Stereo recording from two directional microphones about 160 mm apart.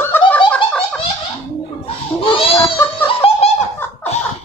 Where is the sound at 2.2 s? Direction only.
35° left (ahead or behind).